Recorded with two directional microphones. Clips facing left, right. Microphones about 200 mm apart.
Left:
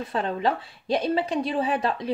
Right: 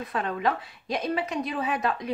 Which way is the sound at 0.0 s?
30° left (ahead or behind).